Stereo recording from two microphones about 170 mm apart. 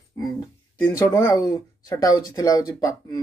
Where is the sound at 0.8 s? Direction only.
15° left (ahead or behind).